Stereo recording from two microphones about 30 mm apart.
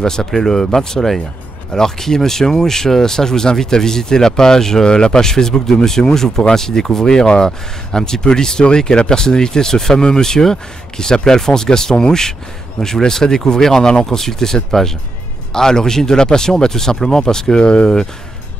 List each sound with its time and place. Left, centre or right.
0.0 s speech: centre
17.6 s speech: left